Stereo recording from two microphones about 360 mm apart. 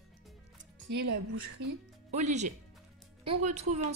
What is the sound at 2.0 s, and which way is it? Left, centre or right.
Speech, centre.